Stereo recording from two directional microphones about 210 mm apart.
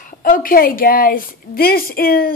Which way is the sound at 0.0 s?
40° left (ahead or behind).